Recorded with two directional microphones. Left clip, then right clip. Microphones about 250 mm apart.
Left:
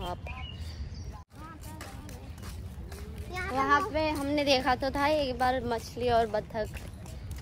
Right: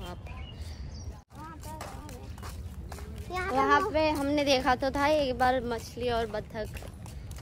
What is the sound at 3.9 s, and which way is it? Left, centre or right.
A woman's voice, centre.